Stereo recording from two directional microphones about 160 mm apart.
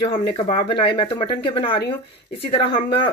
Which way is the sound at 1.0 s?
30° left (ahead or behind).